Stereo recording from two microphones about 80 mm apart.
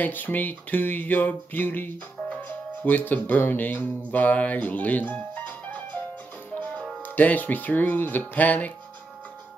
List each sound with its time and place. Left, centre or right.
0.0 s music: left
7.0 s music: left